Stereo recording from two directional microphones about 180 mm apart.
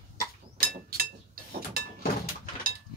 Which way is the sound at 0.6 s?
55° right (ahead or behind).